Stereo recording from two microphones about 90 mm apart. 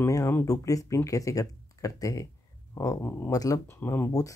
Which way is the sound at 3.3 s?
40° left (ahead or behind).